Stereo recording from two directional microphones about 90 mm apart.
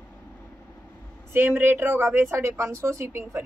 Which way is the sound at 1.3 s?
25° right (ahead or behind).